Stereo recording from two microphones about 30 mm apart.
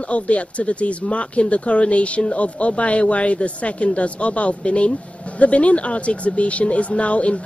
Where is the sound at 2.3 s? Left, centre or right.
Left.